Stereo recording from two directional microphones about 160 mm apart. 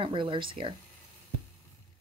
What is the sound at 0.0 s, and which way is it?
Speech, 30° right (ahead or behind).